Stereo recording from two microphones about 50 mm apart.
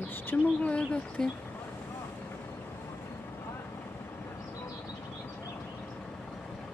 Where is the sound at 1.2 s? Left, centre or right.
Centre.